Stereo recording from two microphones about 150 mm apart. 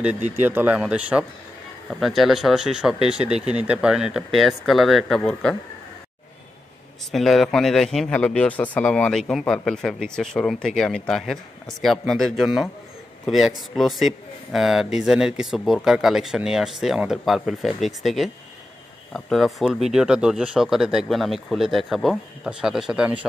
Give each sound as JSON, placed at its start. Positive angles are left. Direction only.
{"t": 0.4, "sound": "speech", "side_deg": -15}
{"t": 7.1, "sound": "a man's voice", "side_deg": 0}